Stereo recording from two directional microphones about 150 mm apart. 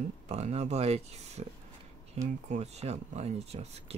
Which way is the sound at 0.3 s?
45° right (ahead or behind).